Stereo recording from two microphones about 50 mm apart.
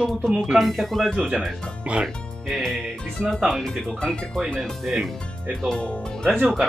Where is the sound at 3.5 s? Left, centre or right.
Centre.